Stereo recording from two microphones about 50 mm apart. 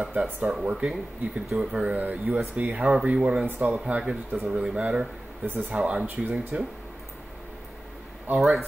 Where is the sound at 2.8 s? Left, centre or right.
Centre.